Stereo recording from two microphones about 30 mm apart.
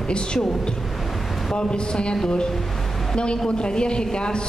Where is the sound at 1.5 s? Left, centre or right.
Left.